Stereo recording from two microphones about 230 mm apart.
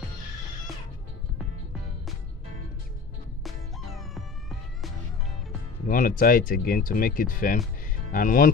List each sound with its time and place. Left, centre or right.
3.4 s music: centre
5.9 s speech: left